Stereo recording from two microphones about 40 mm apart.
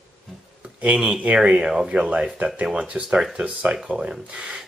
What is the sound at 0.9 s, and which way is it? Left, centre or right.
Speech, centre.